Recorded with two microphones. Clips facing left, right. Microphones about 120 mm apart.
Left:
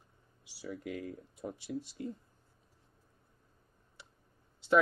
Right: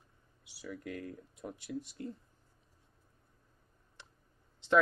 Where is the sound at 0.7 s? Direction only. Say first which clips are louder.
Left 2 dB; 20° left (ahead or behind).